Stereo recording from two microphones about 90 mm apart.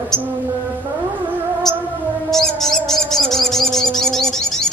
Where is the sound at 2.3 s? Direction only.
5° left (ahead or behind).